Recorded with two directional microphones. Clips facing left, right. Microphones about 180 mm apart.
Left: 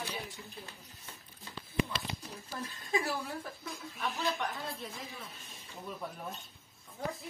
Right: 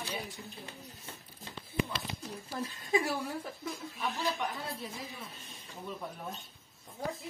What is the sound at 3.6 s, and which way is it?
A woman's voice, centre (ahead or behind).